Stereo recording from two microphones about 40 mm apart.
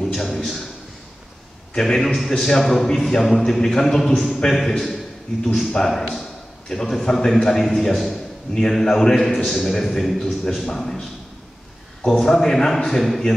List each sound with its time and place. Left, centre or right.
0.0 s a sound: centre
1.7 s a man's voice: centre
10.2 s a man's voice: centre
12.2 s a man's voice: centre